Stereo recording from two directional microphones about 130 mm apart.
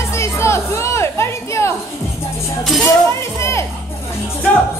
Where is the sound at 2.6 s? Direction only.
Centre (ahead or behind).